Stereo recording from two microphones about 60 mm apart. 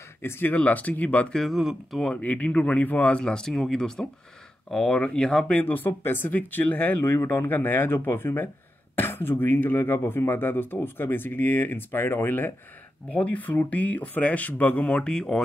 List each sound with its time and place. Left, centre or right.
0.2 s speech: left
0.6 s speech: left
1.3 s speech: centre
1.6 s speech: centre
2.1 s speech: left
5.5 s speech: left
13.1 s speech: left
14.9 s speech: centre